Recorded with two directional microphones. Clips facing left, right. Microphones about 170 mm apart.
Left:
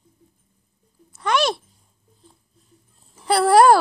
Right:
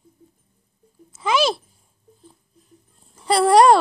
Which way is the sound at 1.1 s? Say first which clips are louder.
Right 1 dB; centre (ahead or behind).